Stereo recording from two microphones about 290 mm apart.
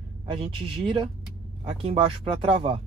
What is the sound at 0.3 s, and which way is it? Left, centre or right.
Speech, centre.